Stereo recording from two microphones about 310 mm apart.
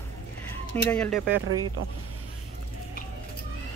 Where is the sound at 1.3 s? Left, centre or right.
Right.